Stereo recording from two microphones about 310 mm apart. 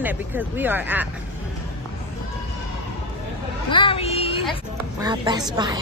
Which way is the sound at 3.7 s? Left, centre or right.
Centre.